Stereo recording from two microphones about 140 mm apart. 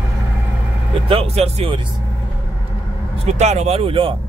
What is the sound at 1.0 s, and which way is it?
Speech, 45° right (ahead or behind).